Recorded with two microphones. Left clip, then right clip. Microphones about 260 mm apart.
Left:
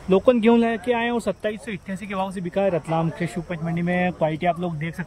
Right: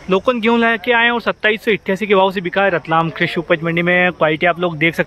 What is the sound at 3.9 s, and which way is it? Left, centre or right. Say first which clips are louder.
Speech: right 10 dB; centre.